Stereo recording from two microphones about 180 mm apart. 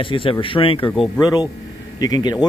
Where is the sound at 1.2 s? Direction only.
20° left (ahead or behind).